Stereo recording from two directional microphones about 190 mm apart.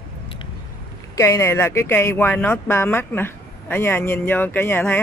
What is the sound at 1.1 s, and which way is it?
A man's voice, 15° left (ahead or behind).